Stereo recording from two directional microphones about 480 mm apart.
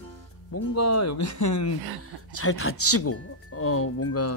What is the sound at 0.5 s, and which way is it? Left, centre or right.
Speech, left.